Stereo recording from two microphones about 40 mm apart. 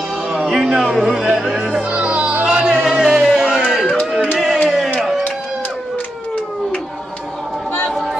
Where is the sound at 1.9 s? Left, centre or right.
Right.